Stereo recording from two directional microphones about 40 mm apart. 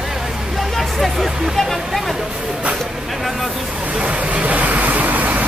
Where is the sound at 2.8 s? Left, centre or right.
Centre.